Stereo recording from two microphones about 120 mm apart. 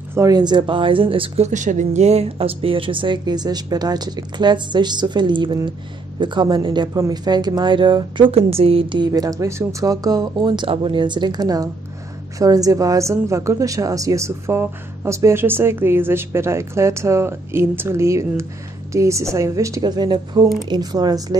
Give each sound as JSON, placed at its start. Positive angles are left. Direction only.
{"t": 0.3, "sound": "speech", "side_deg": -35}
{"t": 1.4, "sound": "speech", "side_deg": -90}
{"t": 6.9, "sound": "speech", "side_deg": -30}
{"t": 8.3, "sound": "a woman's voice", "side_deg": -55}
{"t": 19.8, "sound": "speech", "side_deg": -35}